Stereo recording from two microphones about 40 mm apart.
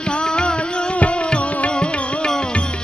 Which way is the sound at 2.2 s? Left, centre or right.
Centre.